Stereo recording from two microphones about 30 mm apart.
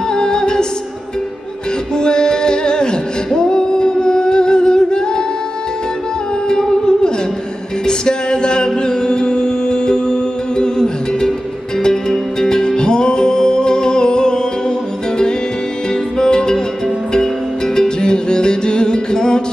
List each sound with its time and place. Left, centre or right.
0.1 s music: left
2.0 s music: left
3.3 s singing: left
6.5 s music: left
12.4 s music: left
15.9 s music: left
17.7 s music: left